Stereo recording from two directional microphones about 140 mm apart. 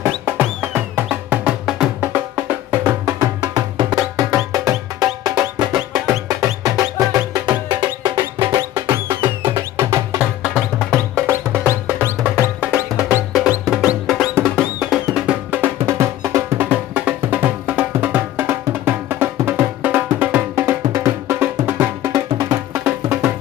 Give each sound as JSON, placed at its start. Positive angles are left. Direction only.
{"t": 0.2, "sound": "music", "side_deg": -15}
{"t": 8.5, "sound": "music", "side_deg": -20}
{"t": 11.2, "sound": "music", "side_deg": -15}
{"t": 13.3, "sound": "music", "side_deg": -5}